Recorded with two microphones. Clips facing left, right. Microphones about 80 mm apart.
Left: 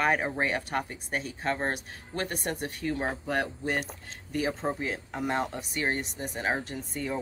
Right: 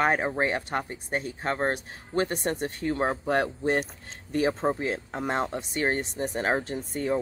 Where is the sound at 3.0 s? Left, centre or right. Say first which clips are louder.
Right 6 dB; right.